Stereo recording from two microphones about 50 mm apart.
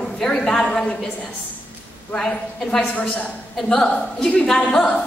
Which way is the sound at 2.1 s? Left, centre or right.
Centre.